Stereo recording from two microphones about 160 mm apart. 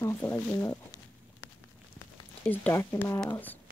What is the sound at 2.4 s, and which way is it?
Speech, 10° left (ahead or behind).